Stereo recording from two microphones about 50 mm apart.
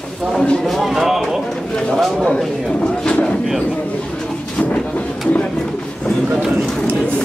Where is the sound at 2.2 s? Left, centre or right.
Centre.